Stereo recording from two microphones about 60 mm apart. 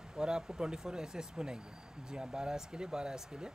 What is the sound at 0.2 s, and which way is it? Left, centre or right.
Speech, centre.